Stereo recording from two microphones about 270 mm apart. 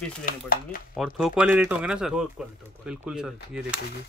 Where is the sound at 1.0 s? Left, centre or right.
Centre.